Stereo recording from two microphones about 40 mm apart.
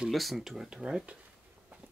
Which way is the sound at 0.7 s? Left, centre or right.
Right.